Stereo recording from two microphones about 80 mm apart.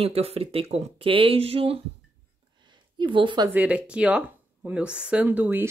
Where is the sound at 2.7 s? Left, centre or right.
Right.